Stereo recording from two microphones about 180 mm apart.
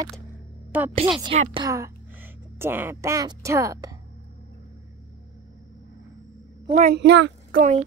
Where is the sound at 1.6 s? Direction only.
20° right (ahead or behind).